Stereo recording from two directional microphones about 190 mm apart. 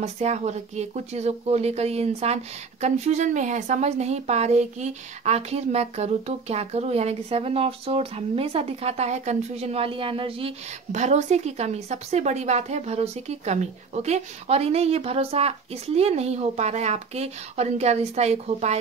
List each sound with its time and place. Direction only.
0.0 s speech: 35° right (ahead or behind)